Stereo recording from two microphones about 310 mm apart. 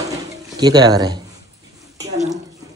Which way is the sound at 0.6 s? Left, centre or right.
Centre.